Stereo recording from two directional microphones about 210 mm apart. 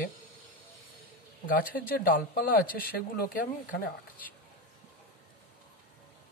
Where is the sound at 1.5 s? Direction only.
40° left (ahead or behind).